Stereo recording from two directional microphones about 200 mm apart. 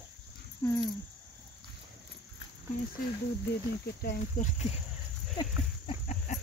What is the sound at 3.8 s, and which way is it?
Speech, 40° left (ahead or behind).